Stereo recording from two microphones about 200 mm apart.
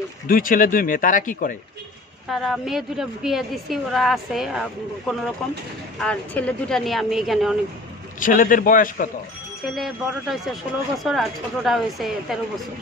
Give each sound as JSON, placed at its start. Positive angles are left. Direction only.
{"t": 0.3, "sound": "speech", "side_deg": 45}
{"t": 2.2, "sound": "a woman's voice", "side_deg": 0}
{"t": 8.2, "sound": "speech", "side_deg": 40}
{"t": 9.8, "sound": "a woman's voice", "side_deg": 0}